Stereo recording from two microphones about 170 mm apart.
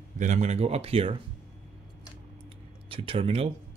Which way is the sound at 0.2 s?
45° right (ahead or behind).